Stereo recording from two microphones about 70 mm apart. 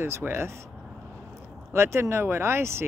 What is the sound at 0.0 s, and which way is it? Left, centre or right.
Speech, right.